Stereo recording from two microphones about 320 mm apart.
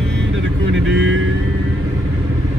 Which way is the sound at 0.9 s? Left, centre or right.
Right.